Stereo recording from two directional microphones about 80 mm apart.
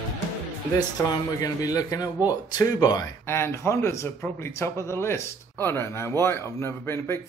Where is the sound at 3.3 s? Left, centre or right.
Left.